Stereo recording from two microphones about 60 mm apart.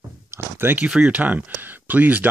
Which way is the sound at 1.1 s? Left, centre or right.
Right.